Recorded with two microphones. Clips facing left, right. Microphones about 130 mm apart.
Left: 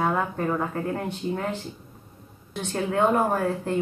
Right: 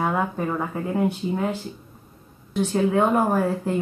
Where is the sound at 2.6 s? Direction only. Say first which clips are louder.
Right 4 dB; 5° right (ahead or behind).